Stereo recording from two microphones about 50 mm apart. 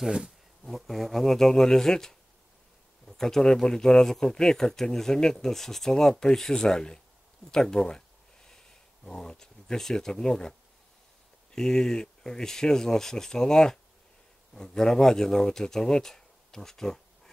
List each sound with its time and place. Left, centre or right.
0.0 s speech: centre
0.7 s speech: centre
8.5 s a sound: centre
11.5 s speech: centre